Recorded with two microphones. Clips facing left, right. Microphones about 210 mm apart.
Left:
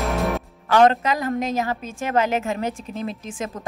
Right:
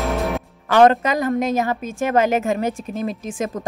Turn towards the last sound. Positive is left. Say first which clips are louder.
# right 4 dB
turn(degrees=-50)  # may be behind; listen again after turning